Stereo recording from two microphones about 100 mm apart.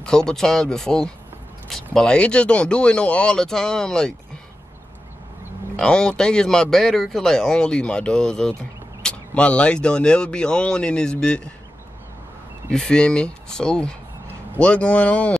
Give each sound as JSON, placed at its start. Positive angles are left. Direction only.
{"t": 0.0, "sound": "speech", "side_deg": 5}
{"t": 5.8, "sound": "speech", "side_deg": 10}
{"t": 12.7, "sound": "speech", "side_deg": 5}